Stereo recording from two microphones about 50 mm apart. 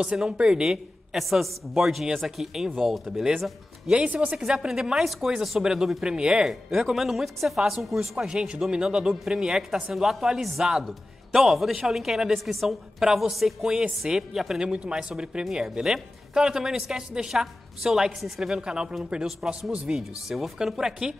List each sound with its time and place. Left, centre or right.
0.0 s a woman's voice: centre
4.0 s speech: right
4.5 s a woman's voice: centre
6.5 s a woman's voice: centre
14.6 s a woman's voice: right
19.2 s a woman's voice: centre